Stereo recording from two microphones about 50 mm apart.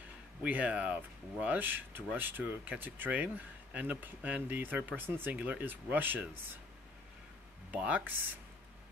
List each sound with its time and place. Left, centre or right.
0.4 s speech: right
7.7 s speech: right